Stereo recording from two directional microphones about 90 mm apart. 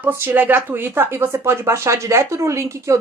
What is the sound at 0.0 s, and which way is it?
Speech, 25° right (ahead or behind).